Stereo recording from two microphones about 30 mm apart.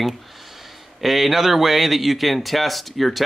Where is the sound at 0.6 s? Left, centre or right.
Centre.